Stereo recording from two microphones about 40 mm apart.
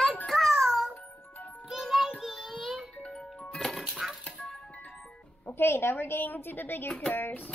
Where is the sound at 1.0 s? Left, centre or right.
Left.